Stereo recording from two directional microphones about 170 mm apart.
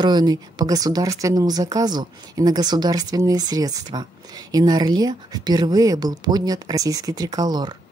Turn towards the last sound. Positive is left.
turn(degrees=-25)  # may be behind; listen again after turning